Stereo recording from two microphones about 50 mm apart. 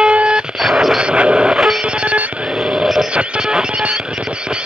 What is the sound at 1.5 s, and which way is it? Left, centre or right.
Telephone bell ringing, centre.